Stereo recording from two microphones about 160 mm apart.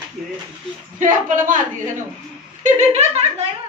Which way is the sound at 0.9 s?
55° right (ahead or behind).